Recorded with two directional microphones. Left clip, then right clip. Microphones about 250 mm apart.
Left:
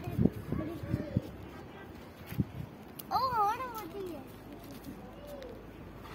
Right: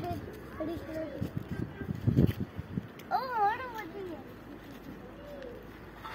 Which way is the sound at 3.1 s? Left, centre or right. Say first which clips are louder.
Even; centre.